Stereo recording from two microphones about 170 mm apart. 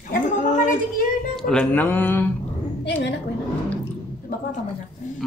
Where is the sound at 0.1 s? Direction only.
50° left (ahead or behind).